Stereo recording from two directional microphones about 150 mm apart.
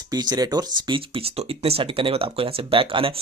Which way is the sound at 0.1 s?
25° right (ahead or behind).